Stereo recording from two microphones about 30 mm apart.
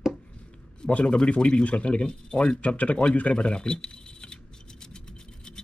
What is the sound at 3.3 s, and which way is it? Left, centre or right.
Speech, left.